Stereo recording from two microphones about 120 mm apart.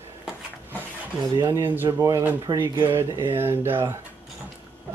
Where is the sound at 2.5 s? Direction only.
40° right (ahead or behind).